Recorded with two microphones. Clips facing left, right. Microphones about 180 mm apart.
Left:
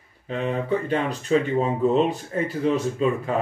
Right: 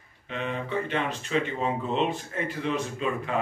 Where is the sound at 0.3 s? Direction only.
40° left (ahead or behind).